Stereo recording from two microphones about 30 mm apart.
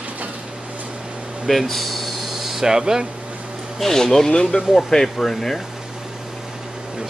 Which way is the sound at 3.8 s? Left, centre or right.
Centre.